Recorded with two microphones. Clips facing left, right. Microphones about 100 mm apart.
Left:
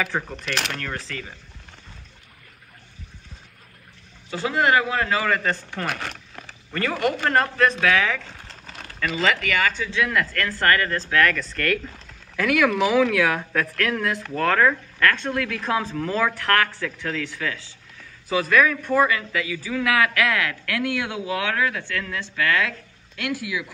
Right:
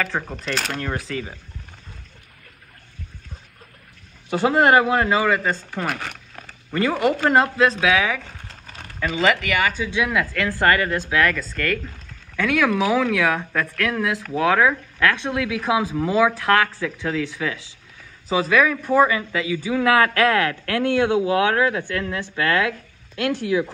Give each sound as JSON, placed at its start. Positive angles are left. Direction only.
{"t": 0.3, "sound": "speech", "side_deg": 0}
{"t": 1.1, "sound": "a man's voice", "side_deg": -20}
{"t": 4.3, "sound": "a man's voice", "side_deg": -25}
{"t": 5.3, "sound": "speech", "side_deg": -10}
{"t": 7.3, "sound": "a man's voice", "side_deg": -15}